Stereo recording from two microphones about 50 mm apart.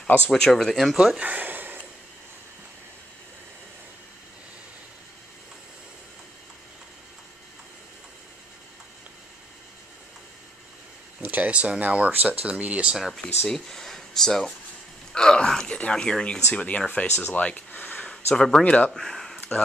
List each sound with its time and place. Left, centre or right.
0.3 s speech: centre
1.2 s a sound: right
11.2 s a sound: right
11.8 s speech: right
13.5 s speech: centre; by 17.1 s left
17.3 s a sound: left
18.1 s speech: centre
18.6 s speech: left
18.9 s speech: centre